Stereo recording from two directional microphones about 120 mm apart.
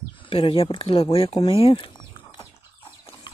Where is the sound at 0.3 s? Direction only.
50° left (ahead or behind).